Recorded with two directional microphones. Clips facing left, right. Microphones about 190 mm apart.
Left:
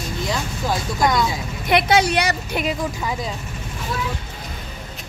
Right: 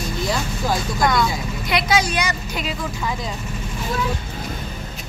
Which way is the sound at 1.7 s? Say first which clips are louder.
Left 4 dB; 60° left (ahead or behind).